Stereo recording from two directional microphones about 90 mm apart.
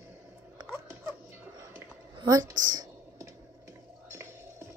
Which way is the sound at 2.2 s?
45° right (ahead or behind).